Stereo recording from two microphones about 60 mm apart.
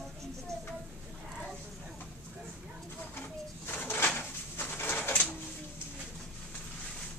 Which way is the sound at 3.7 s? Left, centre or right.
Left.